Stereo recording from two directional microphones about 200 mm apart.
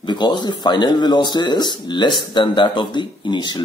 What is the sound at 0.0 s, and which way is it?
A man's voice, 20° left (ahead or behind).